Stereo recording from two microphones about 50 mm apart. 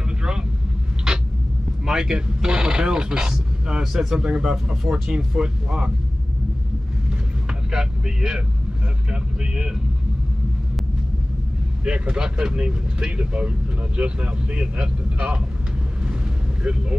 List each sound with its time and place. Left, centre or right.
1.9 s speech: centre
4.2 s speech: centre
7.7 s speech: centre
9.1 s vehicle: centre
11.8 s speech: centre